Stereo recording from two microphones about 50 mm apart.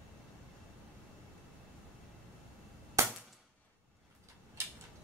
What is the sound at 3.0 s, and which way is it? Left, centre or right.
Cap gun, right.